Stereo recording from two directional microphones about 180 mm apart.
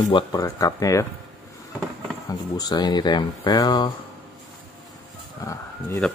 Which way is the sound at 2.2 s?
20° left (ahead or behind).